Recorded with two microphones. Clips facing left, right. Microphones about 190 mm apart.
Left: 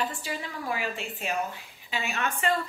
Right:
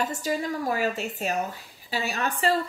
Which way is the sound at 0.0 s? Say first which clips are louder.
Right 5 dB; 40° right (ahead or behind).